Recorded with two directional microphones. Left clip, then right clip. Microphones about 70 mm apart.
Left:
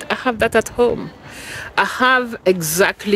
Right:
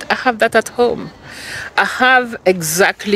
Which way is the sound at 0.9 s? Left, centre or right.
Left.